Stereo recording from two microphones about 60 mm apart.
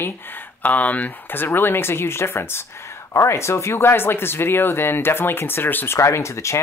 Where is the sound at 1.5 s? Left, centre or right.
Left.